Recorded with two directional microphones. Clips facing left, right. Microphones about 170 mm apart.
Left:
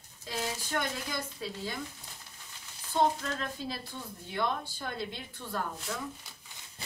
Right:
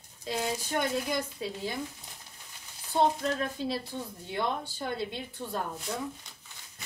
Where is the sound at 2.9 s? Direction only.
20° right (ahead or behind).